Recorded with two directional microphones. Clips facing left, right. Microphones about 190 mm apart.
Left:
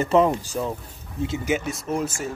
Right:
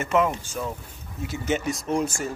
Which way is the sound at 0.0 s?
35° left (ahead or behind).